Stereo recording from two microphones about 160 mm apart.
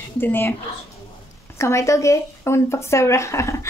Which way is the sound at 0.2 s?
15° left (ahead or behind).